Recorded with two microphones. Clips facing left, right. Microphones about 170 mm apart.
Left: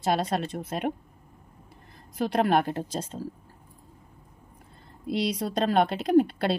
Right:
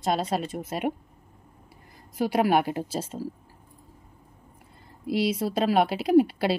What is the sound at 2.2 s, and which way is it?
Speech, 5° right (ahead or behind).